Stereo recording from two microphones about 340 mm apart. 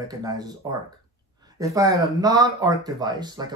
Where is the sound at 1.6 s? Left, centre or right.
Centre.